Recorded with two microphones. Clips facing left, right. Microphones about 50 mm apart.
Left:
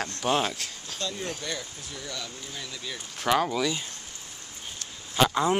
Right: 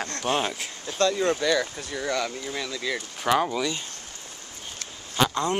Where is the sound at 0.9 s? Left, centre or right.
Right.